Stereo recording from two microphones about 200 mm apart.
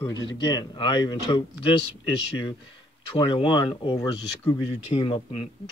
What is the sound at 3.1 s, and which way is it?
Speech, 25° left (ahead or behind).